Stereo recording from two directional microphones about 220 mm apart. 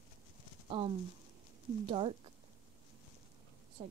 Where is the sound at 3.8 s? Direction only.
25° right (ahead or behind).